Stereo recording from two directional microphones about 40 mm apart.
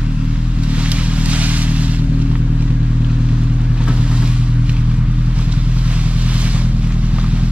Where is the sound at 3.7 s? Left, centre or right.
Right.